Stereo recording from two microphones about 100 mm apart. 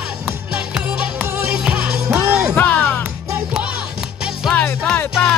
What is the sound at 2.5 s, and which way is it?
Music, 20° left (ahead or behind).